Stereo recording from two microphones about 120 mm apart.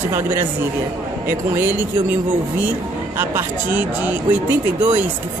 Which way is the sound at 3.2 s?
15° right (ahead or behind).